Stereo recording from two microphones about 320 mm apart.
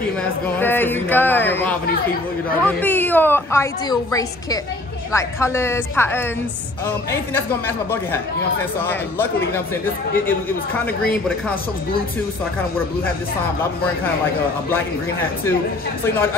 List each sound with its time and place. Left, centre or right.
0.6 s a woman's voice: centre